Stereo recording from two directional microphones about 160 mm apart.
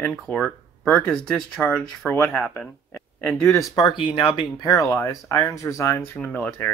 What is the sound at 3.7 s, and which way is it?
Speech, 25° left (ahead or behind).